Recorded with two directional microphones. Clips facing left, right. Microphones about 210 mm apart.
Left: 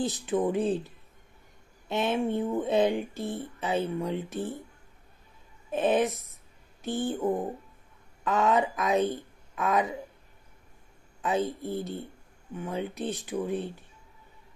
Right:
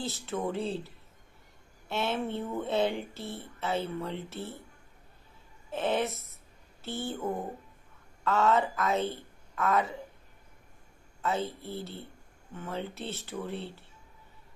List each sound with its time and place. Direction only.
0.0 s speech: 15° left (ahead or behind)
5.7 s speech: 15° left (ahead or behind)
11.1 s speech: 15° left (ahead or behind)